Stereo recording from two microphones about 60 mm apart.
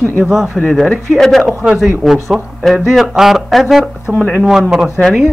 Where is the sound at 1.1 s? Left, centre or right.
Centre.